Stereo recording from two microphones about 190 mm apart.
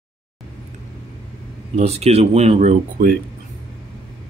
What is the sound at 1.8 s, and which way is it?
Speech, 35° right (ahead or behind).